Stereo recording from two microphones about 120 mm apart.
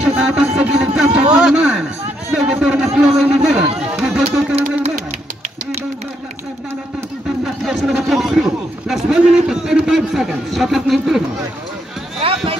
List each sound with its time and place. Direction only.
0.0 s a man's voice: 10° right (ahead or behind)
7.4 s a man's voice: centre (ahead or behind)
12.2 s a sound: 50° right (ahead or behind)